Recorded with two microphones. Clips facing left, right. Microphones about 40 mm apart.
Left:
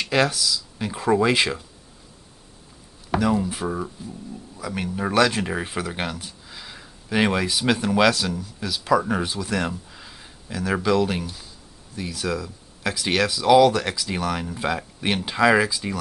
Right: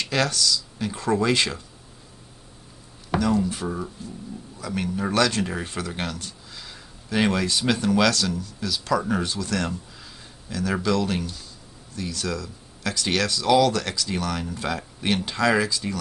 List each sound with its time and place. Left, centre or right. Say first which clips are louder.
0.0 s speech: left 2 dB; centre
3.2 s speech: left 1 dB; centre